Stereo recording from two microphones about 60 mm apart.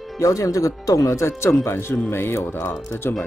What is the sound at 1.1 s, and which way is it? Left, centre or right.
Speech, left.